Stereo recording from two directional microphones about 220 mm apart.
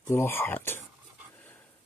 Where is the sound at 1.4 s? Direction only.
10° left (ahead or behind).